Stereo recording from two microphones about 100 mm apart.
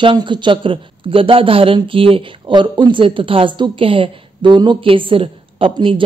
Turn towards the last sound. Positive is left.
turn(degrees=-60)  # may be behind; listen again after turning